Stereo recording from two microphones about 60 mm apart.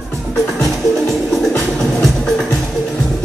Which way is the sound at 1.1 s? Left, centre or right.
Centre.